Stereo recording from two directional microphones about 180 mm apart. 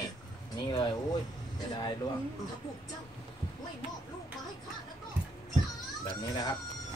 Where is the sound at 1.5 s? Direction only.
25° left (ahead or behind).